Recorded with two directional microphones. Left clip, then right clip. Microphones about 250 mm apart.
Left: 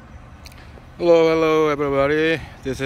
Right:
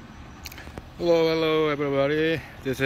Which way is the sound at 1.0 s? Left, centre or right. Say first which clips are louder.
Left 6 dB; centre.